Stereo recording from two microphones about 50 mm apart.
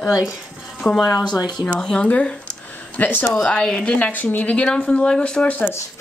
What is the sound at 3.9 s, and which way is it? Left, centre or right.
Speech, left.